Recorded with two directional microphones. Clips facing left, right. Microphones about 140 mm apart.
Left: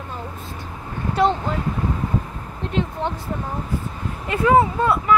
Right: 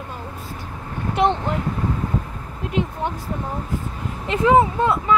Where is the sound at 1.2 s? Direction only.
20° right (ahead or behind).